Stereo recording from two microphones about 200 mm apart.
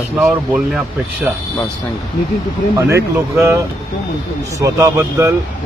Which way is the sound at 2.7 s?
15° right (ahead or behind).